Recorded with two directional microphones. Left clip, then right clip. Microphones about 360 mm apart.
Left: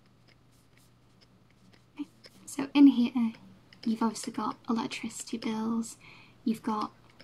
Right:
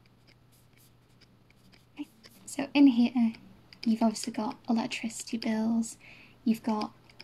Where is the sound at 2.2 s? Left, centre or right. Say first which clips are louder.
Right 2 dB; centre.